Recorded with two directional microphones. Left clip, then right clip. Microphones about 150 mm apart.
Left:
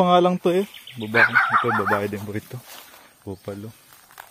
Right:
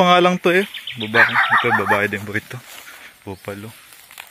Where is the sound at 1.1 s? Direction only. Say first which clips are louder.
Right 2 dB; 65° right (ahead or behind).